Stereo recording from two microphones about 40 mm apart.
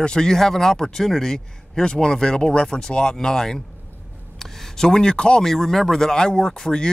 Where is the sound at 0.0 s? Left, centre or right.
Centre.